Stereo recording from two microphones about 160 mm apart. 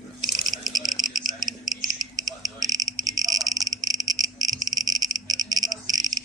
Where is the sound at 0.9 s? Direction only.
25° right (ahead or behind).